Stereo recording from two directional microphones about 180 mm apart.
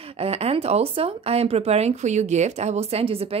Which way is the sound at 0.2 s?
35° right (ahead or behind).